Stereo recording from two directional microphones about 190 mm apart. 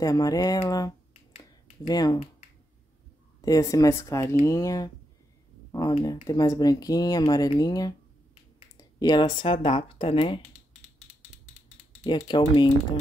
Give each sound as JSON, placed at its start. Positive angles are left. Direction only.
{"t": 0.0, "sound": "speech", "side_deg": 20}
{"t": 3.3, "sound": "speech", "side_deg": 20}
{"t": 12.0, "sound": "speech", "side_deg": 30}